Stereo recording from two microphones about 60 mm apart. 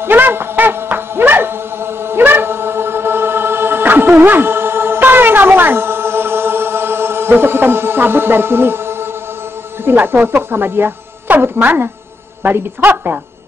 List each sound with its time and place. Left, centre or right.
0.0 s music: right
9.8 s speech: right